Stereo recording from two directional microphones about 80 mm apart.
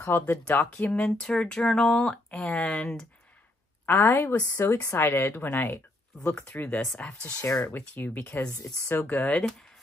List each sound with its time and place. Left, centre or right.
0.0 s speech: left; by 3.1 s centre
3.8 s speech: left
9.4 s speech: centre